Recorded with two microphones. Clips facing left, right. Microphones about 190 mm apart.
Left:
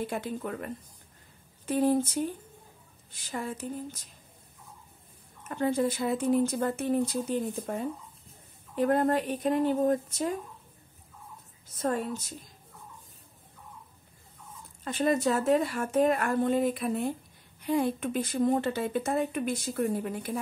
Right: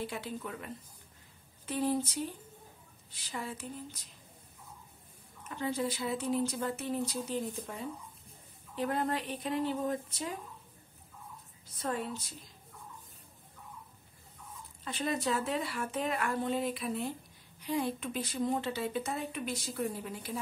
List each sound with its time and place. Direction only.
0.0 s a woman's voice: 50° left (ahead or behind)
5.5 s a woman's voice: 50° left (ahead or behind)
11.7 s a woman's voice: 45° left (ahead or behind)
14.9 s a woman's voice: 45° left (ahead or behind)